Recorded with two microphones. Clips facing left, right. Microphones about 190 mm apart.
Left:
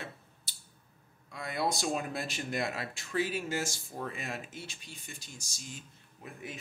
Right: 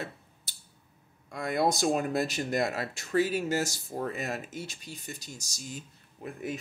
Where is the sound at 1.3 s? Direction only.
45° right (ahead or behind).